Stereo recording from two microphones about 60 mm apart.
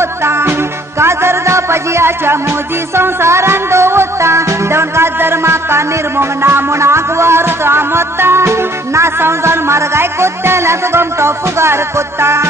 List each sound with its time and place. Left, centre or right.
0.0 s music: right